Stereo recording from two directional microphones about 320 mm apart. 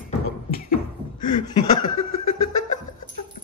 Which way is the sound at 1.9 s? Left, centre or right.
Left.